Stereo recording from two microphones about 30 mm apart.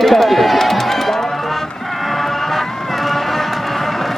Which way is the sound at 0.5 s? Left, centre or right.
Centre.